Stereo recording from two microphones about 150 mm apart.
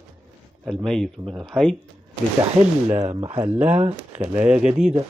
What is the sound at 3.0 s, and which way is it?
Speech, 35° right (ahead or behind).